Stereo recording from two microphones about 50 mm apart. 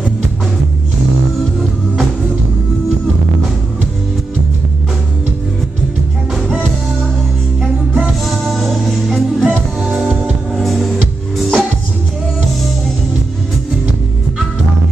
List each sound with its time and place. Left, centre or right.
8.3 s music: centre
9.9 s music: right
10.5 s music: centre